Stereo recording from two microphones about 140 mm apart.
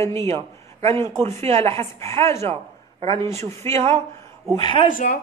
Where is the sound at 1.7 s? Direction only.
20° left (ahead or behind).